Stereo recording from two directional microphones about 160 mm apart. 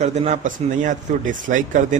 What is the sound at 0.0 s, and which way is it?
A man's voice, 45° right (ahead or behind).